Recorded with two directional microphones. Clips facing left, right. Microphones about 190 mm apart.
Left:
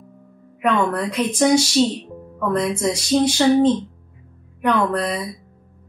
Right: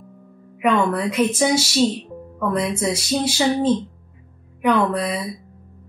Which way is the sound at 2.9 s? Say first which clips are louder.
Left 4 dB; 5° right (ahead or behind).